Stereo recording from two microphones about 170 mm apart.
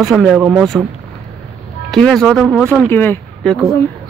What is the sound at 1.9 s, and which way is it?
Speech, centre (ahead or behind).